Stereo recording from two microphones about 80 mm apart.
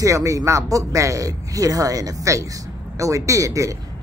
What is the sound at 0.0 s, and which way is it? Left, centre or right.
Speech, right.